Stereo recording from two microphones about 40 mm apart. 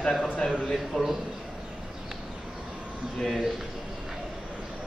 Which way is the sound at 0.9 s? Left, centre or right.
Centre.